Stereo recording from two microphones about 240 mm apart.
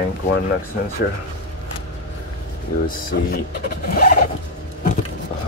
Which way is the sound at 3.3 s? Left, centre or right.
Left.